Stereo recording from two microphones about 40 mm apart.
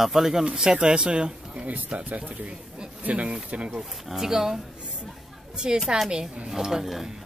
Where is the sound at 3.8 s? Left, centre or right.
Centre.